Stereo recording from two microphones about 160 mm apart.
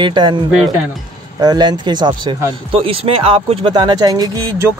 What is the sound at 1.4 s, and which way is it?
Speech, 25° right (ahead or behind).